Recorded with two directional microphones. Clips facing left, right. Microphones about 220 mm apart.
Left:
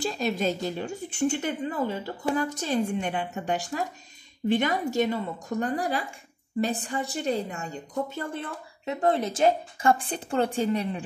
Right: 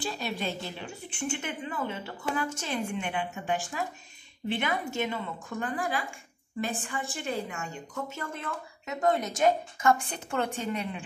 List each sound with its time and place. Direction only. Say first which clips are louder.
0.0 s a woman's voice: left 6 dB; 40° left (ahead or behind)